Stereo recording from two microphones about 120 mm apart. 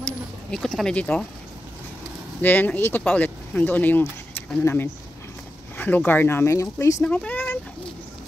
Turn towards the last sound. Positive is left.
turn(degrees=10)  # may be behind; listen again after turning